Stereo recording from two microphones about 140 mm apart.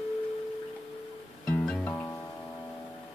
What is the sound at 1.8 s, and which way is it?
Music, 20° left (ahead or behind).